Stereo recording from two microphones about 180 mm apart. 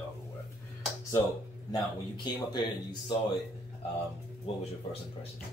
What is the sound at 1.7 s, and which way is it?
Speech, 25° left (ahead or behind).